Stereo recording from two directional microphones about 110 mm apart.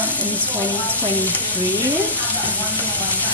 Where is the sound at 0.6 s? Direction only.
15° left (ahead or behind).